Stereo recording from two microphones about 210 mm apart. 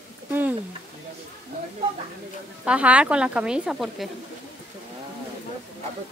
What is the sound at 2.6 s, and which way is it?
A woman's voice, 5° right (ahead or behind).